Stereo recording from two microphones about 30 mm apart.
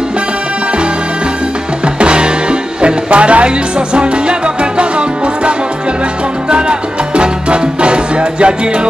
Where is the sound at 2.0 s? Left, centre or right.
Right.